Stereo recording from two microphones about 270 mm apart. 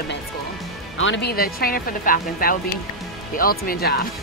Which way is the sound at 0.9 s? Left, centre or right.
Left.